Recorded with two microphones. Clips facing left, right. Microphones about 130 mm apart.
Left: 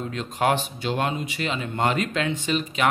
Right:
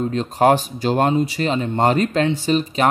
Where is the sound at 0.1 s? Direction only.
35° right (ahead or behind).